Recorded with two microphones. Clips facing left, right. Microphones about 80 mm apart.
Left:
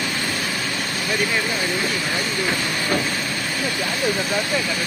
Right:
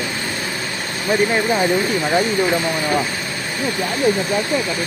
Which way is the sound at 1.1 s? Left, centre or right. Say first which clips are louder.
Right 7 dB; right.